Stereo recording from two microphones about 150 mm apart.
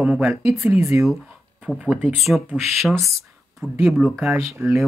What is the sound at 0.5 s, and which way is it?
Speech, 20° right (ahead or behind).